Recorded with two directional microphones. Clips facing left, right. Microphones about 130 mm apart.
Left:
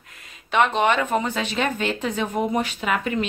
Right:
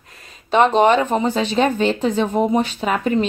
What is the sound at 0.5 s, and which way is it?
Speech, 35° right (ahead or behind).